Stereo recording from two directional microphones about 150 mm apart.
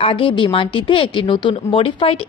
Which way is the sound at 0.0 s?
35° left (ahead or behind).